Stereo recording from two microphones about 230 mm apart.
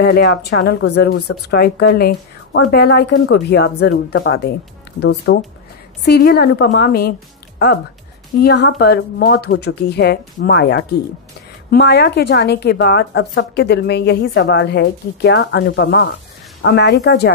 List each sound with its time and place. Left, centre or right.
0.0 s a woman's voice: left
6.0 s a woman's voice: left